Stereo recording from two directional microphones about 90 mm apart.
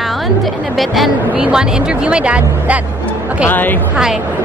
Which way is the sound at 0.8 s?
Centre (ahead or behind).